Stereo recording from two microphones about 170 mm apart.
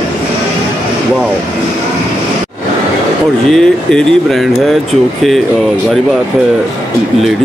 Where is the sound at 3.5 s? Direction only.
5° left (ahead or behind).